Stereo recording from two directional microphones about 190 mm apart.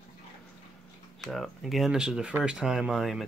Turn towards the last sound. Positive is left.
turn(degrees=0)  # may be behind; listen again after turning